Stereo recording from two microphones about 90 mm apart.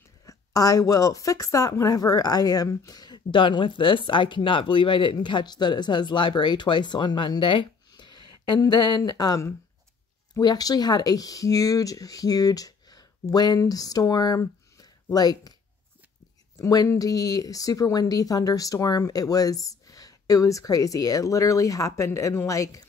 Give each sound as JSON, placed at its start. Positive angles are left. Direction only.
{"t": 0.3, "sound": "speech", "side_deg": 40}
{"t": 5.1, "sound": "speech", "side_deg": 55}
{"t": 7.9, "sound": "a sound", "side_deg": 55}
{"t": 8.6, "sound": "speech", "side_deg": 55}
{"t": 16.5, "sound": "speech", "side_deg": 40}